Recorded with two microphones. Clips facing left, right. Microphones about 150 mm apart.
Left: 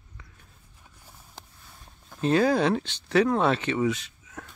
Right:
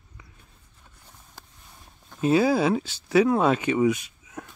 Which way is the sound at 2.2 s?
10° right (ahead or behind).